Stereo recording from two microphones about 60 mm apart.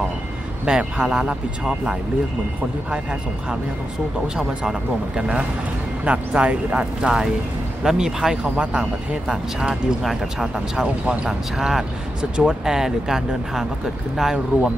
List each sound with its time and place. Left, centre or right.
0.7 s speech: centre